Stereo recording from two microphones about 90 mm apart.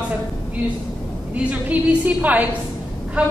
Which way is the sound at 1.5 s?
15° right (ahead or behind).